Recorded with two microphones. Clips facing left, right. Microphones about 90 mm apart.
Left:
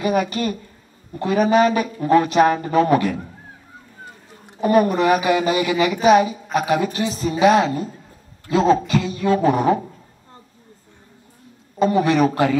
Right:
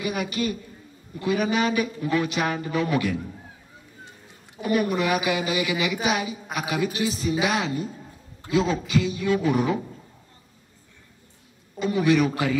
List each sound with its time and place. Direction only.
0.0 s speech: 40° left (ahead or behind)
4.6 s speech: 40° left (ahead or behind)
11.8 s speech: 40° left (ahead or behind)